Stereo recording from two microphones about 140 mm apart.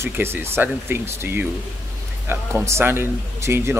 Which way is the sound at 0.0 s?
15° right (ahead or behind).